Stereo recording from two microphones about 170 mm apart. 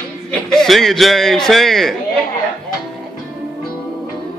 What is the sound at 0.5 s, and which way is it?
A man's voice, centre (ahead or behind).